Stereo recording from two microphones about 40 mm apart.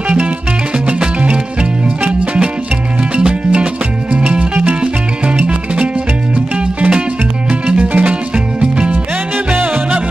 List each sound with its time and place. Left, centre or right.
0.8 s music: right
4.1 s music: right
6.3 s music: right